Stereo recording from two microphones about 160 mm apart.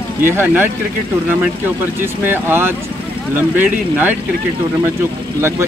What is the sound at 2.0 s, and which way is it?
Speech, 15° right (ahead or behind).